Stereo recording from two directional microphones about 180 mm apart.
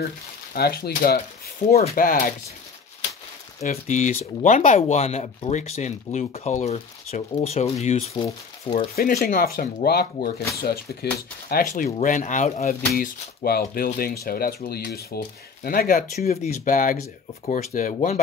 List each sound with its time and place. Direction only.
0.5 s speech: 60° left (ahead or behind)
3.6 s speech: 45° left (ahead or behind)
8.9 s speech: 60° left (ahead or behind)
11.7 s speech: 45° left (ahead or behind)
12.6 s speech: 55° left (ahead or behind)